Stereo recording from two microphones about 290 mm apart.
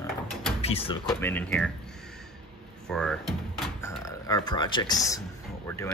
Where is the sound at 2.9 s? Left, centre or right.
Centre.